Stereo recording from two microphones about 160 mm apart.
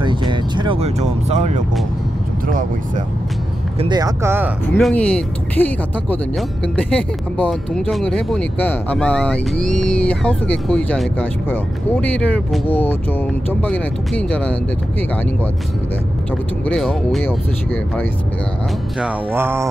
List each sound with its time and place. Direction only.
0.0 s speech: 30° right (ahead or behind)
3.9 s music: 20° right (ahead or behind)
4.7 s speech: 5° left (ahead or behind)
16.6 s speech: centre (ahead or behind)
18.9 s music: 10° right (ahead or behind)